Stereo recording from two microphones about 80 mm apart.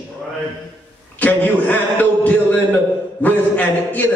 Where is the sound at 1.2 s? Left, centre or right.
Left.